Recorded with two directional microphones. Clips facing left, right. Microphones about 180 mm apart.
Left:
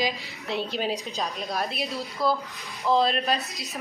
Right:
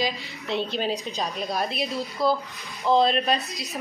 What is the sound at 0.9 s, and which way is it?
A woman's voice, centre (ahead or behind).